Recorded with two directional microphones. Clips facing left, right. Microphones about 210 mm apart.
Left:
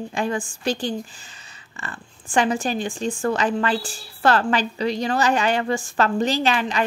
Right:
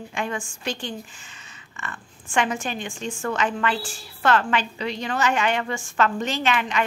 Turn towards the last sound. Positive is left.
turn(degrees=35)  # may be behind; listen again after turning